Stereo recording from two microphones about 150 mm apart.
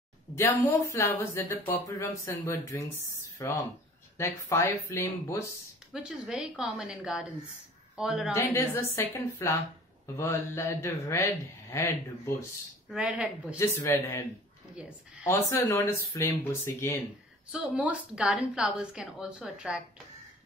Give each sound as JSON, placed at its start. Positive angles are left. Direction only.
{"t": 0.4, "sound": "speech", "side_deg": 15}
{"t": 6.0, "sound": "a woman's voice", "side_deg": -5}
{"t": 8.3, "sound": "speech", "side_deg": 20}
{"t": 12.9, "sound": "a woman's voice", "side_deg": -5}
{"t": 13.6, "sound": "speech", "side_deg": 20}
{"t": 14.8, "sound": "a woman's voice", "side_deg": -5}
{"t": 15.2, "sound": "speech", "side_deg": 20}
{"t": 17.5, "sound": "a woman's voice", "side_deg": -5}